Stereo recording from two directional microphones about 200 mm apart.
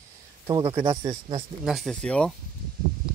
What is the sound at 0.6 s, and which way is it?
Speech, 25° right (ahead or behind).